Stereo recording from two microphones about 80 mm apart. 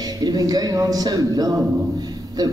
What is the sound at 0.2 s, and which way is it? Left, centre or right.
A woman's voice, right.